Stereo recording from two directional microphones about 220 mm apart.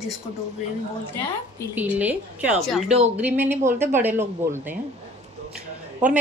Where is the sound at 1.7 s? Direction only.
5° right (ahead or behind).